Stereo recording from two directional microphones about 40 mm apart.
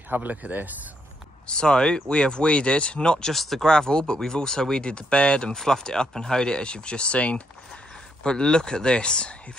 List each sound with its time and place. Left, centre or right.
0.1 s speech: right
1.5 s speech: left
3.3 s speech: centre
3.6 s speech: centre
5.6 s speech: centre